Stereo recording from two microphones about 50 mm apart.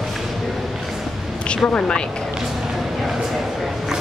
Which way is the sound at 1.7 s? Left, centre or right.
Centre.